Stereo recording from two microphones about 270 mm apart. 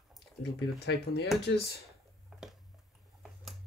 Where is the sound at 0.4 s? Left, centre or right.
Left.